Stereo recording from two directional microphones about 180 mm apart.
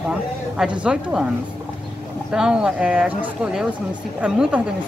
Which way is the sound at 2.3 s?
5° right (ahead or behind).